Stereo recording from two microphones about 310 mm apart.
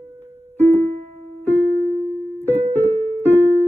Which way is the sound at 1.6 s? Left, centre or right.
Centre.